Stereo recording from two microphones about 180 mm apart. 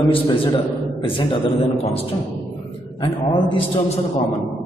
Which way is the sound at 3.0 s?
30° left (ahead or behind).